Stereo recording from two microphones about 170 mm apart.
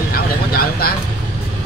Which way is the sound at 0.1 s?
65° left (ahead or behind).